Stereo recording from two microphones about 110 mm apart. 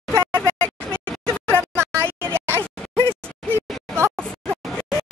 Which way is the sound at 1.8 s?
20° right (ahead or behind).